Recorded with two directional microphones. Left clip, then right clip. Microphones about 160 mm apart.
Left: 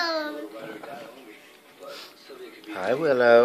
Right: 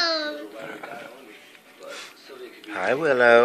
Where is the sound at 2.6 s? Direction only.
5° left (ahead or behind).